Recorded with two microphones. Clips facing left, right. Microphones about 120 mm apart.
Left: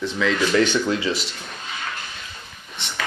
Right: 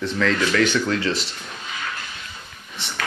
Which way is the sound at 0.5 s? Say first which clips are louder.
Left 1 dB; 20° left (ahead or behind).